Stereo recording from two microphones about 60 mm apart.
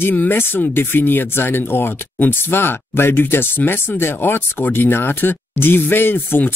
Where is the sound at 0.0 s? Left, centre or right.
Left.